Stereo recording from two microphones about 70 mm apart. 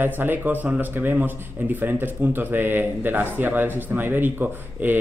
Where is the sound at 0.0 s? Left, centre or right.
Right.